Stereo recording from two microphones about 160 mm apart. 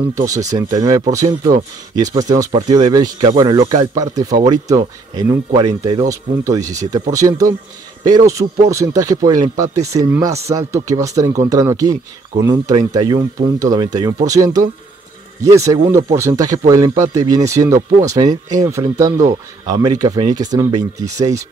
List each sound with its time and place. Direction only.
0.1 s speech: 20° right (ahead or behind)